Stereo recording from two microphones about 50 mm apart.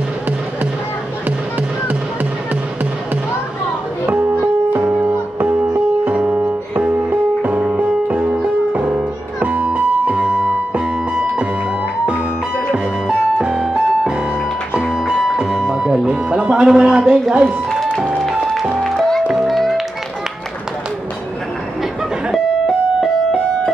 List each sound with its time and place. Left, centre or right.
4.1 s music: right
13.4 s music: centre
15.3 s music: centre
18.8 s music: centre